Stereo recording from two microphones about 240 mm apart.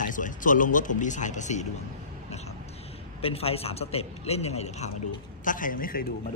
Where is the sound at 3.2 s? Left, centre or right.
Left.